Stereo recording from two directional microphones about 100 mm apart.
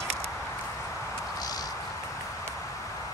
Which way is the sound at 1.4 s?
40° left (ahead or behind).